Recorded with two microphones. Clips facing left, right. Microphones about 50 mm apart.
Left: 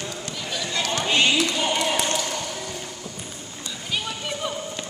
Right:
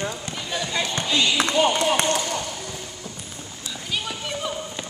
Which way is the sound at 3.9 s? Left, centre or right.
Centre.